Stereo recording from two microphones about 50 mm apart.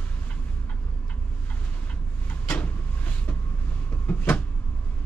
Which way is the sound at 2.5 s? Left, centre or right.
Left.